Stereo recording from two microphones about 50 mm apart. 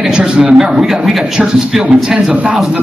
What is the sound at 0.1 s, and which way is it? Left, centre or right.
A man's voice, centre.